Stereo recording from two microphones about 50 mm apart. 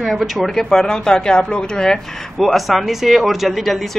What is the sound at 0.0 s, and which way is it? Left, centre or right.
Speech, centre.